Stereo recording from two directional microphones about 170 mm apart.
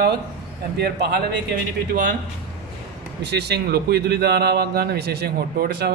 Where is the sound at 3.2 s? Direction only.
75° right (ahead or behind).